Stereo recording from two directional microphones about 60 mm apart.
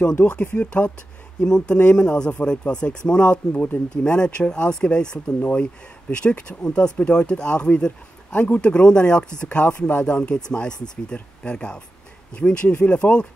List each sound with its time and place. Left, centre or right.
0.0 s speech: centre